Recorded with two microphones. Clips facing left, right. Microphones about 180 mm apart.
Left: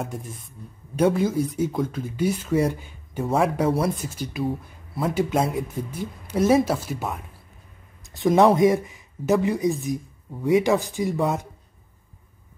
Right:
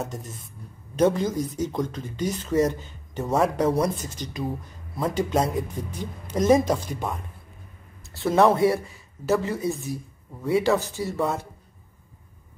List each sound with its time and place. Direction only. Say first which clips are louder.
0.0 s speech: left 1 dB; 10° left (ahead or behind)
8.1 s speech: left 2 dB; 15° left (ahead or behind)